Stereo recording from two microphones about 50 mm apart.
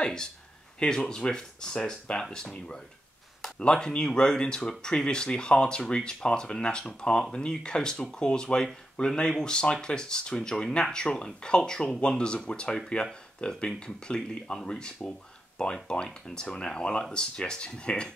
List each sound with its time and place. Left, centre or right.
0.0 s speech: centre